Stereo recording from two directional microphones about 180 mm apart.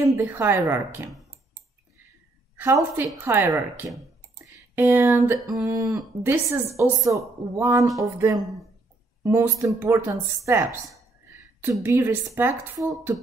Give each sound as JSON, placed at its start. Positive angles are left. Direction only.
{"t": 0.0, "sound": "a woman's voice", "side_deg": -15}
{"t": 2.5, "sound": "a woman's voice", "side_deg": -15}
{"t": 3.5, "sound": "speech", "side_deg": 0}
{"t": 4.5, "sound": "a woman's voice", "side_deg": -15}
{"t": 7.8, "sound": "speech", "side_deg": 0}
{"t": 9.2, "sound": "a woman's voice", "side_deg": -15}
{"t": 11.8, "sound": "a woman's voice", "side_deg": -15}